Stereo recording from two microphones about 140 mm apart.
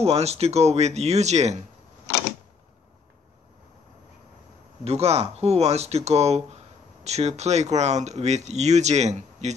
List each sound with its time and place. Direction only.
0.0 s speech: 45° right (ahead or behind)
4.8 s speech: 45° right (ahead or behind)